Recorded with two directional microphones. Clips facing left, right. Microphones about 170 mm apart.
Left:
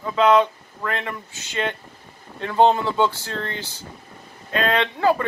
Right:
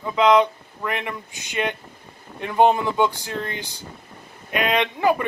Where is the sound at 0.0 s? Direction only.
15° right (ahead or behind).